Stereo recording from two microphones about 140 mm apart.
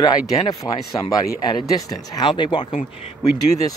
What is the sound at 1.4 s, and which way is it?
Speech, 30° left (ahead or behind).